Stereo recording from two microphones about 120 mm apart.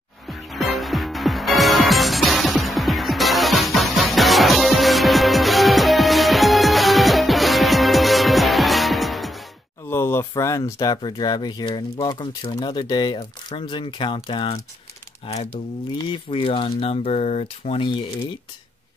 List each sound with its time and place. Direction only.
0.3 s music: centre (ahead or behind)
9.8 s a sound: 20° left (ahead or behind)
11.0 s speech: 40° left (ahead or behind)
15.2 s speech: 60° left (ahead or behind)
16.0 s speech: 45° left (ahead or behind)